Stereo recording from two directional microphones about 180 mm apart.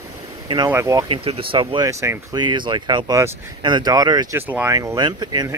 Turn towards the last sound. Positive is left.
turn(degrees=-25)  # may be behind; listen again after turning